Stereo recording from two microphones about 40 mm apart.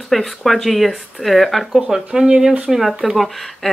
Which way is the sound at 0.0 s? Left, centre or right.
Centre.